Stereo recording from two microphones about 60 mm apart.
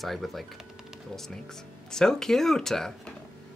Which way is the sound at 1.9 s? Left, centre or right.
Centre.